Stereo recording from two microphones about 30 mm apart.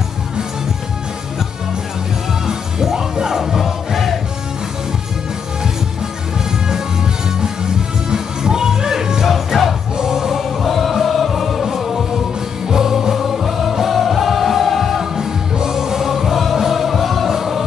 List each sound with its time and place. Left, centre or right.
2.4 s music: centre
7.4 s music: right
9.3 s music: centre
9.9 s music: centre
10.6 s music: centre
11.6 s music: centre
15.1 s music: centre